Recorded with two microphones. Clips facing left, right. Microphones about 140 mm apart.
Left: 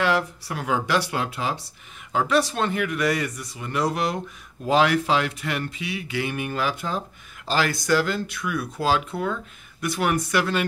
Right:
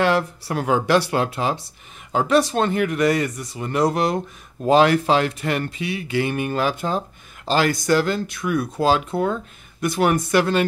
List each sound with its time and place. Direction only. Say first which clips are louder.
0.0 s speech: right 3 dB; 35° right (ahead or behind)
7.8 s speech: right 3 dB; 40° right (ahead or behind)